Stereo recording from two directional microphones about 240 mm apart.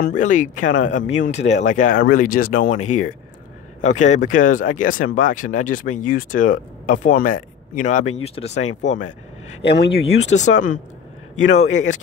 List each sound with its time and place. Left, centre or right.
0.0 s speech: left
0.7 s speech: left
0.9 s a man's voice: left
9.6 s speech: left
11.5 s speech: left